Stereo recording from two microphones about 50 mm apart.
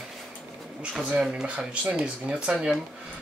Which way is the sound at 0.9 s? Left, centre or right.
Centre.